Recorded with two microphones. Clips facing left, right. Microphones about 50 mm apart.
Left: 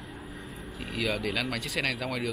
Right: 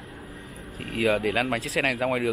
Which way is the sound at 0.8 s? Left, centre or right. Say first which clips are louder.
Right 7 dB; right.